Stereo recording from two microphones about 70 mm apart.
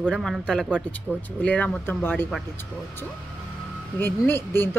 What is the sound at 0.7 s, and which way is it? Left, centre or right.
Speech, centre.